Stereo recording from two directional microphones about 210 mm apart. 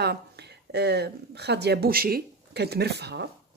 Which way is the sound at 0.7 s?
50° right (ahead or behind).